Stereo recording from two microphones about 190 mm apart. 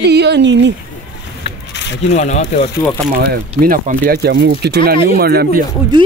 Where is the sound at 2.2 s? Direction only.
40° left (ahead or behind).